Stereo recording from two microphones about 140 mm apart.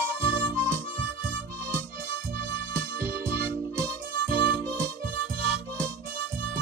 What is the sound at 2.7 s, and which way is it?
Music, 15° right (ahead or behind).